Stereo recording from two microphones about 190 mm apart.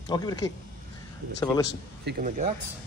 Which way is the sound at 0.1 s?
20° left (ahead or behind).